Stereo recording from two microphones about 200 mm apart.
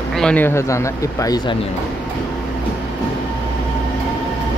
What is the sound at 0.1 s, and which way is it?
Speech, 5° left (ahead or behind).